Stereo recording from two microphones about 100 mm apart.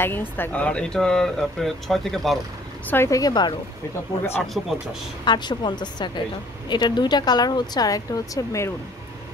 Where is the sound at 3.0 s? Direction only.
35° left (ahead or behind).